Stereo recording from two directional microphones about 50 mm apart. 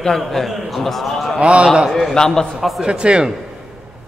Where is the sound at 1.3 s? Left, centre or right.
Right.